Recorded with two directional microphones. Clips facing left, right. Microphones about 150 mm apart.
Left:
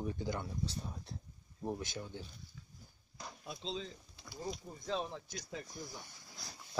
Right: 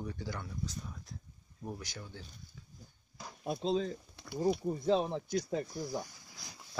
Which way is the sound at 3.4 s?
50° right (ahead or behind).